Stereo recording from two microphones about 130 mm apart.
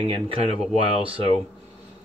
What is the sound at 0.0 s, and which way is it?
Speech, 45° right (ahead or behind).